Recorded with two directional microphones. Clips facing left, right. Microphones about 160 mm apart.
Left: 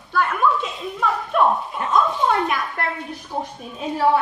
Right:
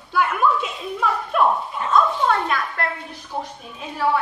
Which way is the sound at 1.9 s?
15° left (ahead or behind).